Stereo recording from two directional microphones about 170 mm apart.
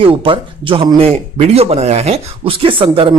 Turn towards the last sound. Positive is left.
turn(degrees=-30)  # may be behind; listen again after turning